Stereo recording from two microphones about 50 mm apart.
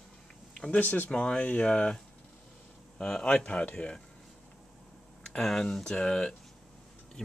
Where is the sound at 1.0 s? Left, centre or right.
Centre.